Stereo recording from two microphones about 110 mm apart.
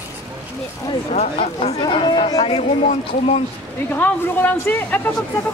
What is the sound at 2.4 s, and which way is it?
Speech, 60° left (ahead or behind).